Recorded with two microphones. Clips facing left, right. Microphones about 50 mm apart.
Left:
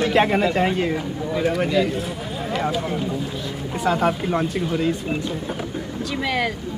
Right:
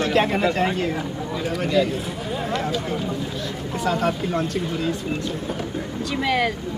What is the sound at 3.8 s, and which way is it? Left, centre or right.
Speech, centre.